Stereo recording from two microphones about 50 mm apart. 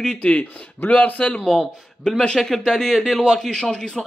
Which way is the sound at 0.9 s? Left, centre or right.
Left.